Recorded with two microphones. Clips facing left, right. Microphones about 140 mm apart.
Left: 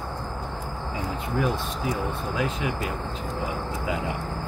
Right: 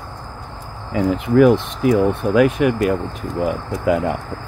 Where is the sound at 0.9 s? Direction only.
75° right (ahead or behind).